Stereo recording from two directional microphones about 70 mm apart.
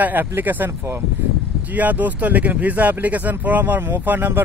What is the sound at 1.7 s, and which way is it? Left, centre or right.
Speech, right.